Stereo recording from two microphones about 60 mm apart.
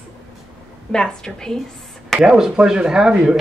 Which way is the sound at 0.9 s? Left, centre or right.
Centre.